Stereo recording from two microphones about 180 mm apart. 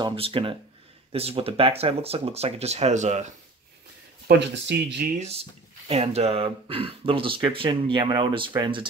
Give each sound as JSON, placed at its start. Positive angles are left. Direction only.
{"t": 0.0, "sound": "speech", "side_deg": -30}
{"t": 4.3, "sound": "speech", "side_deg": -70}
{"t": 5.2, "sound": "speech", "side_deg": -35}